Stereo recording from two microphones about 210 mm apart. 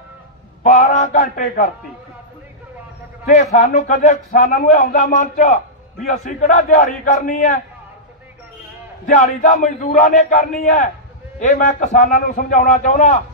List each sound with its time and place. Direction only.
0.7 s speech: 35° left (ahead or behind)
3.5 s speech: 35° left (ahead or behind)
9.0 s speech: 35° left (ahead or behind)